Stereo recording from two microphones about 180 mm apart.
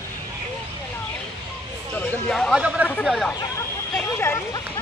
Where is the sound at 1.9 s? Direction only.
5° left (ahead or behind).